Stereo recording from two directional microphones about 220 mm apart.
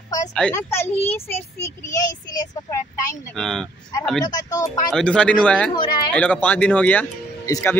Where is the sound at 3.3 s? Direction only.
Centre (ahead or behind).